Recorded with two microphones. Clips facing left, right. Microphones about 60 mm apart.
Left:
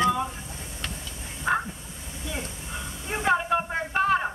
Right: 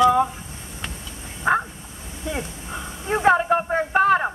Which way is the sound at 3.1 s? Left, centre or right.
Right.